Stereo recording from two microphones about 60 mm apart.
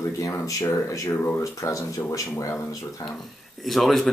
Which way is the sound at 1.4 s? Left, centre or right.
Left.